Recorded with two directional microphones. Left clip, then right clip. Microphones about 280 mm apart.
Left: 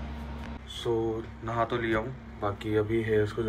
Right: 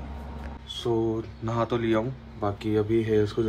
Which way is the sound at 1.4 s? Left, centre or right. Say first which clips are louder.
Right 2 dB; right.